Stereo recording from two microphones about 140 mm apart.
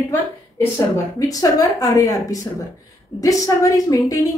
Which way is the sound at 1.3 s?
25° left (ahead or behind).